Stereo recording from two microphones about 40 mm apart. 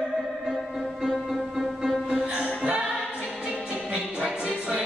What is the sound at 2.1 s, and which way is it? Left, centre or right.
Music, right.